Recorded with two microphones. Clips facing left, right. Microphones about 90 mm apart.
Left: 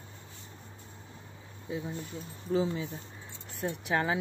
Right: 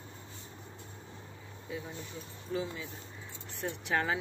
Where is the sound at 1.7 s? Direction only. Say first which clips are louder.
Left 5 dB; 25° left (ahead or behind).